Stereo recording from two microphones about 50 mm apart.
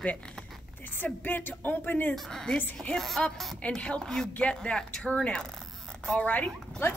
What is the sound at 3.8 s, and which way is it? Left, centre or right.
Speech, left.